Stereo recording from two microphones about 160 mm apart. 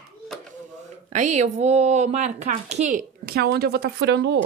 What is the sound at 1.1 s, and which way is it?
Speech, 50° right (ahead or behind).